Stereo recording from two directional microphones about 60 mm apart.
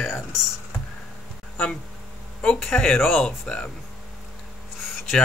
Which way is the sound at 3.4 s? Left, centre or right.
Centre.